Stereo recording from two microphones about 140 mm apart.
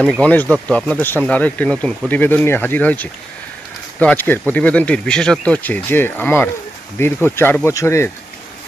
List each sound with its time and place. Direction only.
0.0 s speech: 10° left (ahead or behind)